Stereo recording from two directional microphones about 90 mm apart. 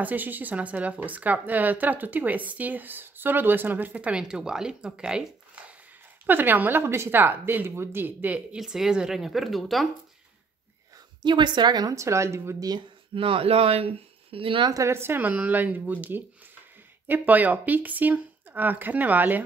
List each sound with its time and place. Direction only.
0.0 s a woman's voice: 20° right (ahead or behind)
6.2 s a woman's voice: 20° right (ahead or behind)
8.5 s speech: 5° right (ahead or behind)
11.2 s a woman's voice: 60° right (ahead or behind)
11.9 s a woman's voice: 35° right (ahead or behind)
13.1 s speech: 80° right
14.7 s a woman's voice: 35° right (ahead or behind)